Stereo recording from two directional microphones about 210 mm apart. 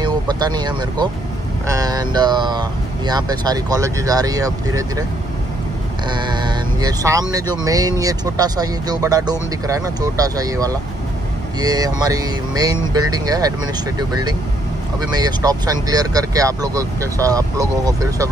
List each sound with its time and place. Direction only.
0.0 s speech: 20° right (ahead or behind)
1.7 s mantra: 15° right (ahead or behind)
3.1 s speech: 20° right (ahead or behind)
6.0 s speech: 20° right (ahead or behind)